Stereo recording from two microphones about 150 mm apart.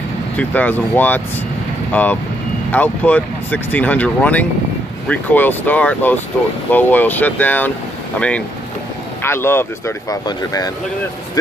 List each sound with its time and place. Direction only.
0.4 s speech: 10° left (ahead or behind)